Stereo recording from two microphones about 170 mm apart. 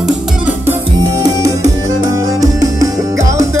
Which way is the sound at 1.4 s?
20° right (ahead or behind).